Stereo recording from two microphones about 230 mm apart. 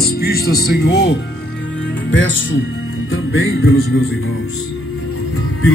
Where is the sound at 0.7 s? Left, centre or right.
Left.